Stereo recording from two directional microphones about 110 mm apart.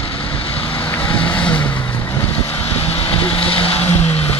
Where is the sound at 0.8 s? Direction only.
15° left (ahead or behind).